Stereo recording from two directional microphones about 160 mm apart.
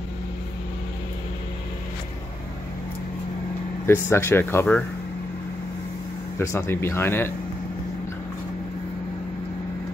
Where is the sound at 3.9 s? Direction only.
15° left (ahead or behind).